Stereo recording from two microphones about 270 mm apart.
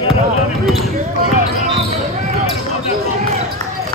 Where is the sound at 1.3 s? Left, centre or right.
Right.